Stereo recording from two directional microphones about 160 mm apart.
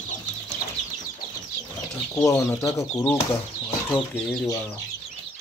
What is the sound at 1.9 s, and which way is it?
Chicken, 5° left (ahead or behind).